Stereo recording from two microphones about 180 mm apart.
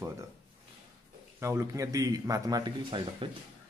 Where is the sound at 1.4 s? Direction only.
15° right (ahead or behind).